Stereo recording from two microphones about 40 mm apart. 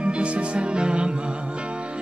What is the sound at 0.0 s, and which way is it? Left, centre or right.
Music, right.